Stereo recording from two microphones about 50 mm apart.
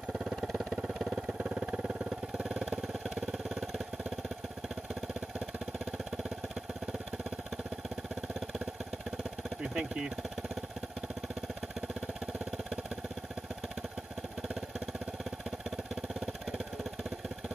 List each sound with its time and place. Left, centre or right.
1.1 s vehicle: centre
2.4 s vehicle: centre
9.6 s speech: centre